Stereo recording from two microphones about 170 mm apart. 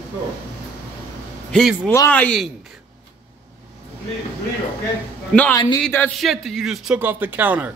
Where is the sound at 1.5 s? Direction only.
Centre (ahead or behind).